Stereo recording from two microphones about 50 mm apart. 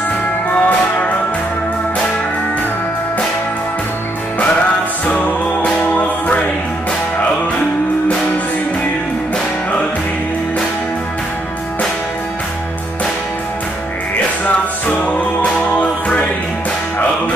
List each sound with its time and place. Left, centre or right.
0.5 s music: left
5.0 s music: left